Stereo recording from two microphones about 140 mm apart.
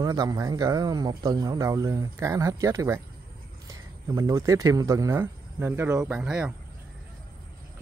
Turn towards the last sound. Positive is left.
turn(degrees=-5)  # may be behind; listen again after turning